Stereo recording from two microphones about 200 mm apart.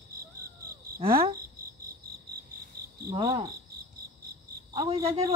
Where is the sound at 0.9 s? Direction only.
25° right (ahead or behind).